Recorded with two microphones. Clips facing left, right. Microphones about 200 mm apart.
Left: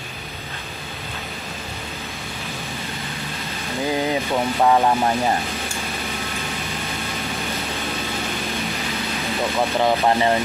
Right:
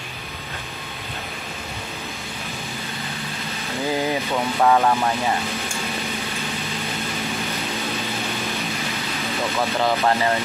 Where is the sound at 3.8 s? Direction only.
15° left (ahead or behind).